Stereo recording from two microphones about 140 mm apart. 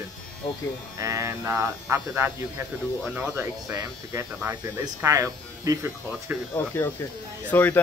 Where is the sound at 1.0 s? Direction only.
25° right (ahead or behind).